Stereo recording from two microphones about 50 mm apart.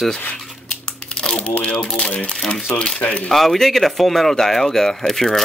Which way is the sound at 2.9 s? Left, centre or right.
Left.